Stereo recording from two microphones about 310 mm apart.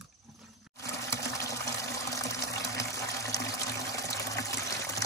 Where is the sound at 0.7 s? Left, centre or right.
Centre.